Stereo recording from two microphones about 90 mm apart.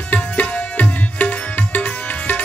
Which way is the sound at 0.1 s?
15° left (ahead or behind).